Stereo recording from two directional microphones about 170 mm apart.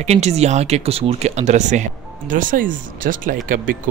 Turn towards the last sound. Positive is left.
turn(degrees=-50)  # may be behind; listen again after turning